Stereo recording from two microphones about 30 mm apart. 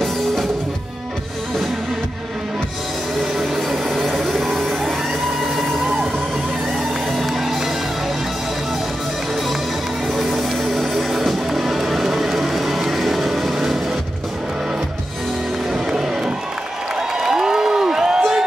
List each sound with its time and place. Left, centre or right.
3.3 s music: centre
7.1 s music: centre
10.1 s music: centre
15.7 s music: centre
17.2 s a sound: centre